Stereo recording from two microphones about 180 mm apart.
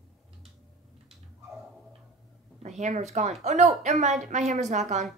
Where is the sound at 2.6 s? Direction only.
40° right (ahead or behind).